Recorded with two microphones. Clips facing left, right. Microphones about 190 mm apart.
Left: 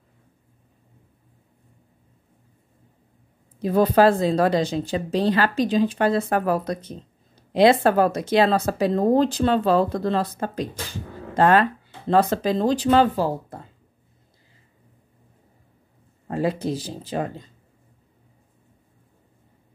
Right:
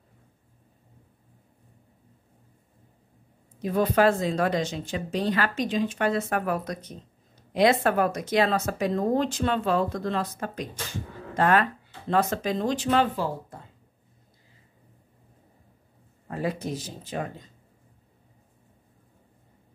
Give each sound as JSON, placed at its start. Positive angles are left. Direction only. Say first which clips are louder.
{"t": 3.5, "sound": "speech", "louder": "left 5 dB", "side_deg": 35}
{"t": 16.3, "sound": "speech", "louder": "left 6 dB", "side_deg": 30}